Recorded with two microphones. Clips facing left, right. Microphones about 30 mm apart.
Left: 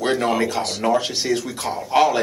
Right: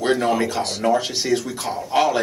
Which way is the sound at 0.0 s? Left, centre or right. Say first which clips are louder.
Even; centre.